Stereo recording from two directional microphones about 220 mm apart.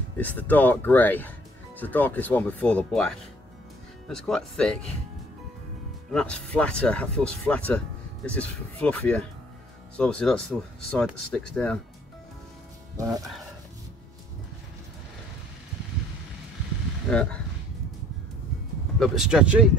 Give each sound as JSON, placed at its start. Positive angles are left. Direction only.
{"t": 0.2, "sound": "speech", "side_deg": 5}
{"t": 6.1, "sound": "speech", "side_deg": 5}
{"t": 12.9, "sound": "speech", "side_deg": -15}
{"t": 17.1, "sound": "speech", "side_deg": 5}
{"t": 18.9, "sound": "speech", "side_deg": -5}